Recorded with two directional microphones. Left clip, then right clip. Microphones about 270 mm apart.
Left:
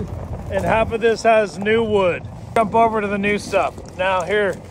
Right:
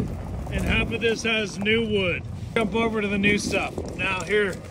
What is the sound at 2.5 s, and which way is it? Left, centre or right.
Speech, left.